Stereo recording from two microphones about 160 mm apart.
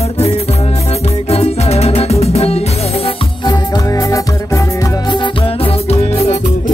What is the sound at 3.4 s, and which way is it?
Music, 25° left (ahead or behind).